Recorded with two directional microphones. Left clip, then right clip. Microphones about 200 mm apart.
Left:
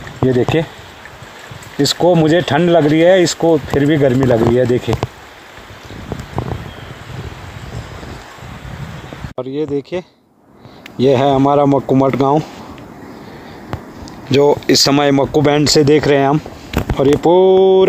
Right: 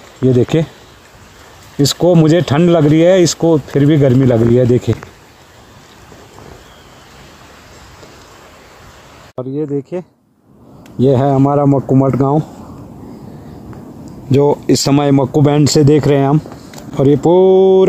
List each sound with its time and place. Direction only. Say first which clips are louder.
0.3 s speech: right 1 dB; centre (ahead or behind)
1.8 s speech: right 1 dB; centre (ahead or behind)
9.5 s speech: even; 55° left (ahead or behind)
11.0 s speech: left 1 dB; centre (ahead or behind)
11.3 s speech: left 1 dB; 10° left (ahead or behind)
14.0 s speech: left 1 dB; centre (ahead or behind)